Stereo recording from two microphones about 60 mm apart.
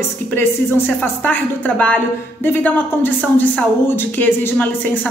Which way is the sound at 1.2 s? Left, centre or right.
Left.